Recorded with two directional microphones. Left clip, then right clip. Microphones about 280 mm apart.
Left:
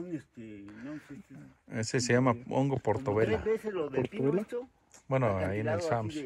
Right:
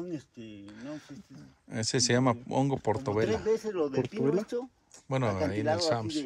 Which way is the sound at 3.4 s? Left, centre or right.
Right.